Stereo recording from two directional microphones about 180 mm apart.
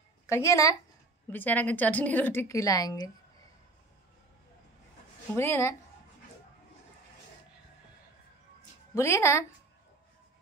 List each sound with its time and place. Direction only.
0.3 s a woman's voice: 15° left (ahead or behind)
5.3 s a woman's voice: 15° left (ahead or behind)
8.9 s a woman's voice: 15° left (ahead or behind)